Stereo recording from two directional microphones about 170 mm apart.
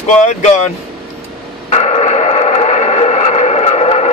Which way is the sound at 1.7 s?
40° left (ahead or behind).